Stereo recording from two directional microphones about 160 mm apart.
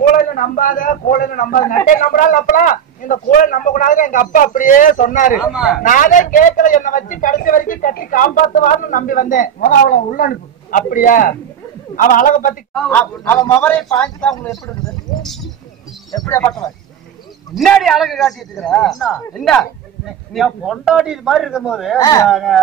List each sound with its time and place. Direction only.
0.0 s a man's voice: 55° left (ahead or behind)
5.5 s a man's voice: 5° right (ahead or behind)
5.9 s a man's voice: 55° left (ahead or behind)
12.7 s a man's voice: 5° left (ahead or behind)
16.1 s speech: 15° left (ahead or behind)
17.6 s a man's voice: centre (ahead or behind)
21.9 s speech: 20° left (ahead or behind)
22.3 s a man's voice: centre (ahead or behind)